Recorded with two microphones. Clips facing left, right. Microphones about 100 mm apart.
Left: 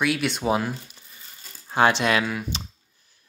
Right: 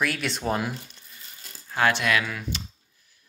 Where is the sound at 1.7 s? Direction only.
25° left (ahead or behind).